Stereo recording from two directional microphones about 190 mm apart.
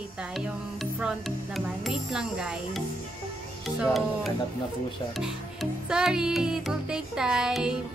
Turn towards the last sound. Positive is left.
turn(degrees=-5)  # may be behind; listen again after turning